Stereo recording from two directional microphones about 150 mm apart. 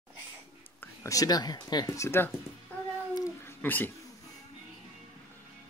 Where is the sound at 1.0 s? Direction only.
25° left (ahead or behind).